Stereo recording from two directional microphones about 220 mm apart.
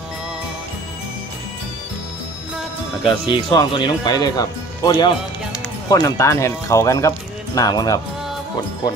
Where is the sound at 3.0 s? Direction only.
20° left (ahead or behind).